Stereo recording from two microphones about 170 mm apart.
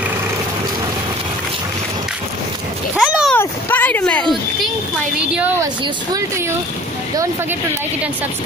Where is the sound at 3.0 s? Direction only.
5° right (ahead or behind).